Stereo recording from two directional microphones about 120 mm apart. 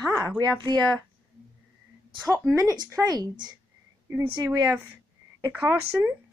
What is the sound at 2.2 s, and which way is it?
Speech, centre (ahead or behind).